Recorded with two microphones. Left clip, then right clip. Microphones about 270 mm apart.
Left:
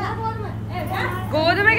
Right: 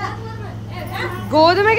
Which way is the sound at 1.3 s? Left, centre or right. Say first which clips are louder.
Right 5 dB; centre.